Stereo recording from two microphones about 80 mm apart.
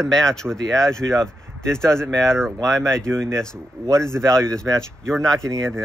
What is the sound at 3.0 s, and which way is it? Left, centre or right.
Speech, right.